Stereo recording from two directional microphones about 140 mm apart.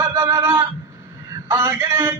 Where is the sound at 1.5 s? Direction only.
20° right (ahead or behind).